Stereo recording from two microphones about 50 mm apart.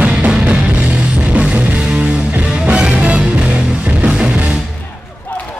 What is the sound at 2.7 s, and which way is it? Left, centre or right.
Music, right.